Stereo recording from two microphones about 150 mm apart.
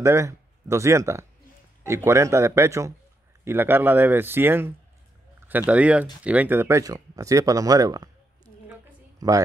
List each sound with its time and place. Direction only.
0.0 s speech: 20° right (ahead or behind)
9.2 s speech: 25° right (ahead or behind)